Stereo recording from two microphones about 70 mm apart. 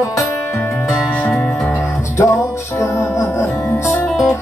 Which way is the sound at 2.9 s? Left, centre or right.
Left.